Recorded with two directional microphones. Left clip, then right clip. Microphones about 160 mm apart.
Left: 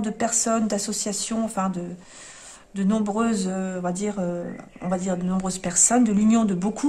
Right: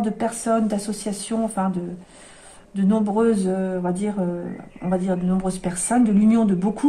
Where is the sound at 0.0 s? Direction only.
40° left (ahead or behind).